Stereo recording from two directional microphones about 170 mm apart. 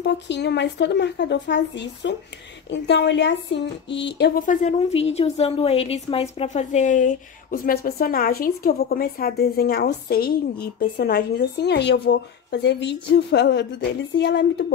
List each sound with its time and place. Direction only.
0.0 s speech: 85° left
4.4 s a woman's voice: 50° left (ahead or behind); by 14.4 s 90° left